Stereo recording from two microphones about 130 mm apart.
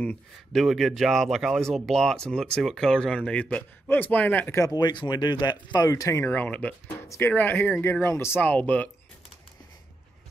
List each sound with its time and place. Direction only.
0.5 s speech: centre (ahead or behind); by 4.7 s 20° left (ahead or behind)
4.7 s speech: 35° left (ahead or behind); by 8.9 s 10° left (ahead or behind)